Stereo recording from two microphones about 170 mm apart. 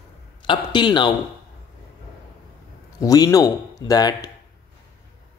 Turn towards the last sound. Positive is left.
turn(degrees=20)  # may be behind; listen again after turning